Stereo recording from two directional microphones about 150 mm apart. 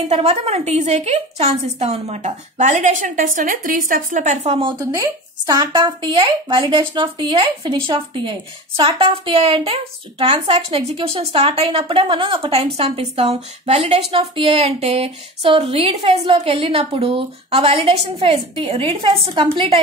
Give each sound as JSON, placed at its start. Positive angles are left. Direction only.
{"t": 0.1, "sound": "a woman's voice", "side_deg": -45}
{"t": 4.5, "sound": "speech", "side_deg": -35}
{"t": 5.5, "sound": "speech", "side_deg": -25}